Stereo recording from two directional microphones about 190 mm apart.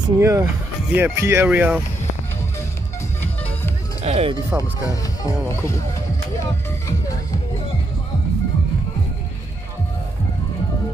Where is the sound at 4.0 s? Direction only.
35° right (ahead or behind).